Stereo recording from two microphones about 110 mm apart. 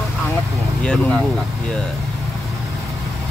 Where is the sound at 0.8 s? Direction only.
10° left (ahead or behind).